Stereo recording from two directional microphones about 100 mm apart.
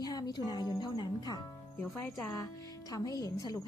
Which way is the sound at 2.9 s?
35° left (ahead or behind).